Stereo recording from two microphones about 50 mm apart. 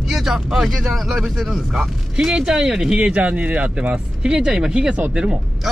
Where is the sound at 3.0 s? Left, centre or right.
Right.